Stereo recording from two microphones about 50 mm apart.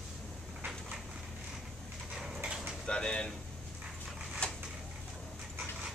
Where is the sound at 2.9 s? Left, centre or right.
Centre.